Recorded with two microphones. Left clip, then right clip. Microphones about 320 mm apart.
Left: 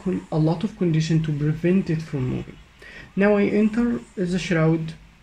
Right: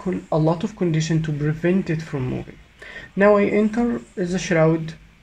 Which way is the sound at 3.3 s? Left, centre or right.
Right.